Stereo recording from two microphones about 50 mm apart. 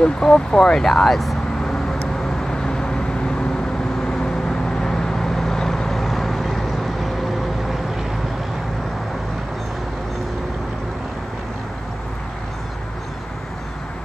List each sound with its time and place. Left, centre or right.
0.0 s speech: centre
2.4 s vehicle: centre